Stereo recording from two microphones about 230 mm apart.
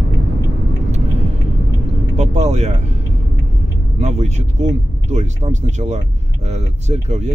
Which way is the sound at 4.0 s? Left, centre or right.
Right.